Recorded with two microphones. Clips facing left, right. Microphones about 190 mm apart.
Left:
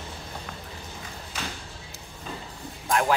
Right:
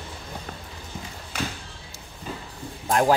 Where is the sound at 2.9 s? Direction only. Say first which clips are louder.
Right 4 dB; 35° right (ahead or behind).